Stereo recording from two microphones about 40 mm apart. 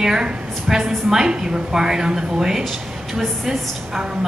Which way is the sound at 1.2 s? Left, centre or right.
Centre.